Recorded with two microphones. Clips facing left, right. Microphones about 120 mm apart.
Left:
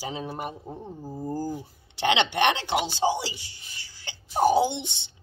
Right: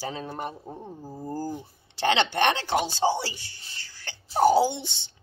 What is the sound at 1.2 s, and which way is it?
A woman's voice, 15° left (ahead or behind).